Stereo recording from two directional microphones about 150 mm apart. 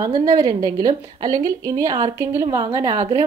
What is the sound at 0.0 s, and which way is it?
A woman's voice, 25° right (ahead or behind).